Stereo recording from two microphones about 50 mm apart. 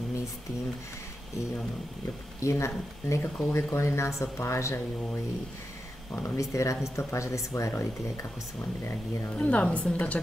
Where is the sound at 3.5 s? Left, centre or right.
Left.